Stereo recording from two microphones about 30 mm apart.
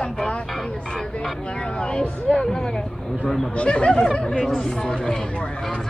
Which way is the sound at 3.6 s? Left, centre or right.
Left.